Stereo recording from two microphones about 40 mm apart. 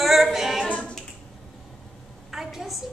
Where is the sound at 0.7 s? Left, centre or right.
Left.